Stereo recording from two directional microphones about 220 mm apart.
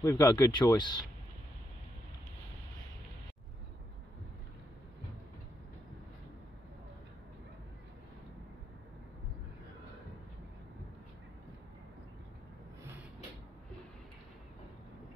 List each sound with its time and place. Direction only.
0.0 s speech: 15° left (ahead or behind)